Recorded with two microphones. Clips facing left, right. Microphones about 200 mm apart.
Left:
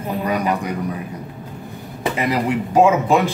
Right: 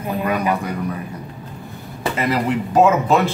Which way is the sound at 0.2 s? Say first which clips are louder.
Even; 15° left (ahead or behind).